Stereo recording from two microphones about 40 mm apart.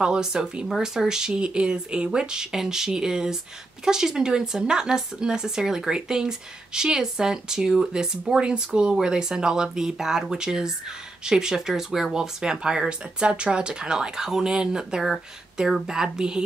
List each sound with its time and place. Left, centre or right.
0.0 s speech: centre